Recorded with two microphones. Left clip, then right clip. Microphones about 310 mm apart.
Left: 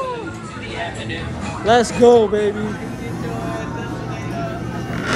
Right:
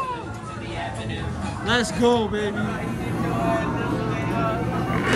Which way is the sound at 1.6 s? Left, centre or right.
Centre.